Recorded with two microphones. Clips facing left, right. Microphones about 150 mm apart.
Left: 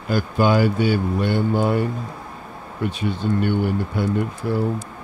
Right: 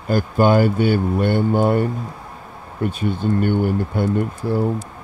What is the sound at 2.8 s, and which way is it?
Speech, 50° right (ahead or behind).